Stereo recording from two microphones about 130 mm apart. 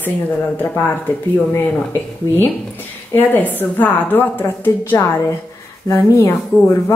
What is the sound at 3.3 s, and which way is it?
Speech, 15° left (ahead or behind).